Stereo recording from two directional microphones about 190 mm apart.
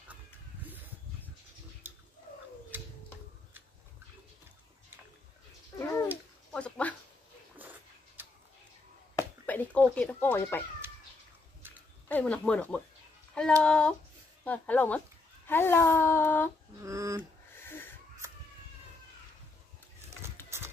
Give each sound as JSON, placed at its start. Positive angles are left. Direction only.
{"t": 5.8, "sound": "a sound", "side_deg": 15}
{"t": 9.1, "sound": "chop", "side_deg": 10}
{"t": 12.1, "sound": "speech", "side_deg": 5}
{"t": 16.8, "sound": "a sound", "side_deg": -15}
{"t": 17.6, "sound": "wheeze", "side_deg": 10}
{"t": 20.5, "sound": "clip-clop", "side_deg": -15}